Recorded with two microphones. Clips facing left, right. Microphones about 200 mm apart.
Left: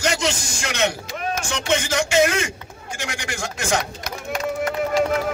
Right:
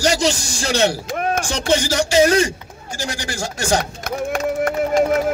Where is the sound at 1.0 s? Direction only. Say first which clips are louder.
Right 6 dB; 55° right (ahead or behind).